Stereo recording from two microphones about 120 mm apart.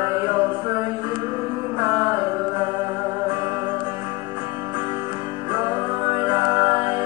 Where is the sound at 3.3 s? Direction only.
35° right (ahead or behind).